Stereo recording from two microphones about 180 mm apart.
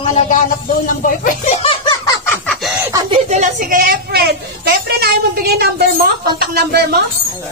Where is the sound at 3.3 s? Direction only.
45° right (ahead or behind); by 6.8 s 60° right (ahead or behind).